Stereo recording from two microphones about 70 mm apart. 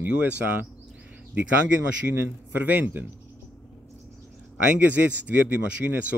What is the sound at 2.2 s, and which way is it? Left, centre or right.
Speech, right.